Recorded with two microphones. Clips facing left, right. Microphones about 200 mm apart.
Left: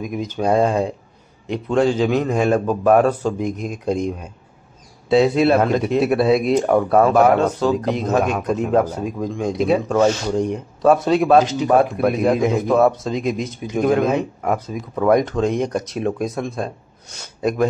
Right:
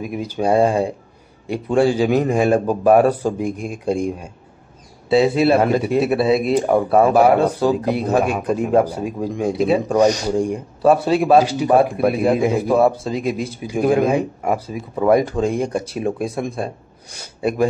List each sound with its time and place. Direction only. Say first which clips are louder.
0.0 s speech: right 1 dB; 10° right (ahead or behind)
9.8 s a man's voice: right 1 dB; 15° right (ahead or behind)